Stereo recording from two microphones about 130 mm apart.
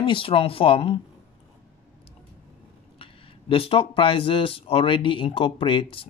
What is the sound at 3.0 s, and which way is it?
Speech, 45° left (ahead or behind).